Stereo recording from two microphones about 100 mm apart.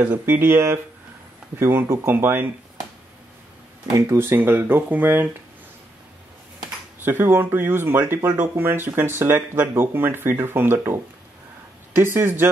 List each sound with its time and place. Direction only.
0.0 s speech: 20° right (ahead or behind)
3.9 s speech: 25° right (ahead or behind)
7.0 s speech: 20° right (ahead or behind)
12.0 s speech: 25° right (ahead or behind)